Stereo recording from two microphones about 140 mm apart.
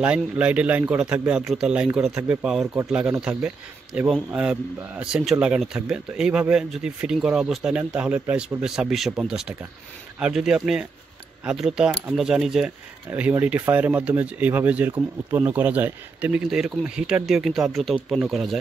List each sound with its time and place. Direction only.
0.0 s speech: 10° right (ahead or behind)
2.6 s speech: 20° right (ahead or behind)
2.9 s a man's voice: 5° right (ahead or behind)